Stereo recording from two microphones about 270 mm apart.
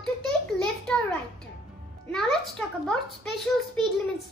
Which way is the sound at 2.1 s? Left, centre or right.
Centre.